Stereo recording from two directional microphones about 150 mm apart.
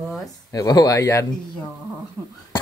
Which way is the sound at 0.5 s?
25° left (ahead or behind).